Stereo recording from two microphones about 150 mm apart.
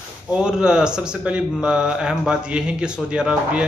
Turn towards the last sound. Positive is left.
turn(degrees=-5)  # may be behind; listen again after turning